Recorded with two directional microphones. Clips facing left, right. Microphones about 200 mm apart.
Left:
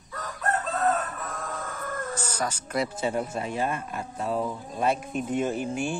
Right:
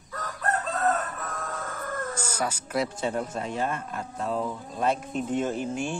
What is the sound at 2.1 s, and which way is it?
Speech, 10° right (ahead or behind).